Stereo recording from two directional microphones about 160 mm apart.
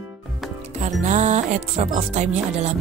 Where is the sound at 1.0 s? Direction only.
45° right (ahead or behind).